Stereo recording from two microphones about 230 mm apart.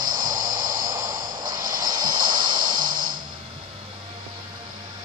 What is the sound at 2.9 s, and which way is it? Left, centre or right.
Music, right.